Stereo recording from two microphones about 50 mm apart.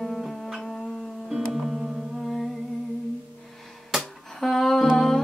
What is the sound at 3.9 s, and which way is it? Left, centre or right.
Music, centre.